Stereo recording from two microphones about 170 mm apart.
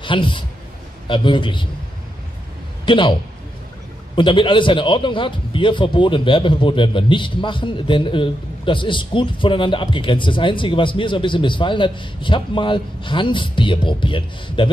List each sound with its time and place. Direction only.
0.0 s a man's voice: 30° left (ahead or behind)
2.8 s a man's voice: 30° left (ahead or behind)